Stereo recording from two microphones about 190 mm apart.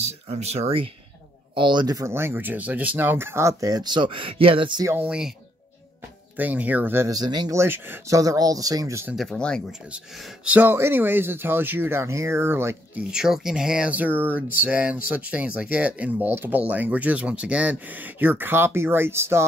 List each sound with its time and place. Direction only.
0.0 s speech: 35° right (ahead or behind)
4.9 s speech: 5° right (ahead or behind)
6.3 s speech: 10° right (ahead or behind)
9.1 s speech: centre (ahead or behind)
9.9 s speech: 5° right (ahead or behind)